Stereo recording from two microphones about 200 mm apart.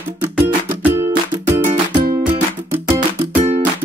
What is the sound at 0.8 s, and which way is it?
Music, 10° right (ahead or behind).